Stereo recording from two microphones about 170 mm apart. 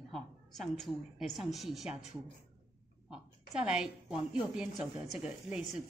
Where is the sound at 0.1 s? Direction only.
Centre (ahead or behind).